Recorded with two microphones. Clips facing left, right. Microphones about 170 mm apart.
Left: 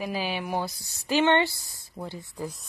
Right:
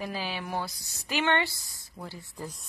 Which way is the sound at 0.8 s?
30° left (ahead or behind).